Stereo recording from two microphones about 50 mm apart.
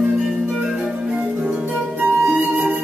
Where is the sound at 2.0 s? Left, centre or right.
Right.